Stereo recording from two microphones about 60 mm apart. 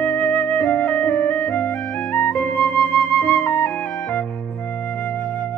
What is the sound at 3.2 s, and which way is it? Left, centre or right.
Flute, left.